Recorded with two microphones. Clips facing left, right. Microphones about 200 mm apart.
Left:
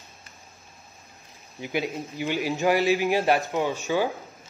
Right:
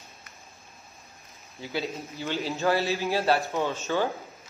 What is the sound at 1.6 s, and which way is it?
A man's voice, 15° left (ahead or behind).